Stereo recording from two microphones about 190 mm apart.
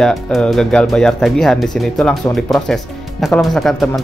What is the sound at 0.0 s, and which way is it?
Speech, centre (ahead or behind).